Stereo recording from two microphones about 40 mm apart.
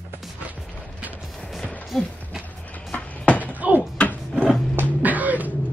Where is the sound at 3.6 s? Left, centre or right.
Right.